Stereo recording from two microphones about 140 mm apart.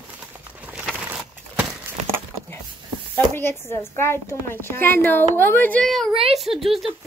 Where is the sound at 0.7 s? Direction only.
5° right (ahead or behind).